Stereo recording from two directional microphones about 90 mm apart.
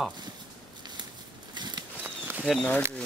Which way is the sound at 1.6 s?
50° right (ahead or behind).